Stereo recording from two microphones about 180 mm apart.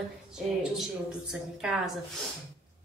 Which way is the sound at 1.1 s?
5° right (ahead or behind).